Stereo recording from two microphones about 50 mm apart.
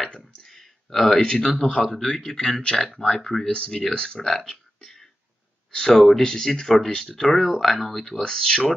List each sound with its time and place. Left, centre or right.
0.0 s clicking: centre
1.2 s speech: centre
3.4 s speech: centre
8.2 s speech: centre